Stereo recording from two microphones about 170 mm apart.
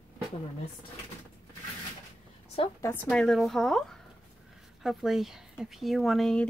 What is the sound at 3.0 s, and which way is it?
A woman's voice, centre (ahead or behind).